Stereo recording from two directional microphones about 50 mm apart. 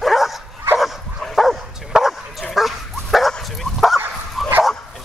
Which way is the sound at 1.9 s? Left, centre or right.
Centre.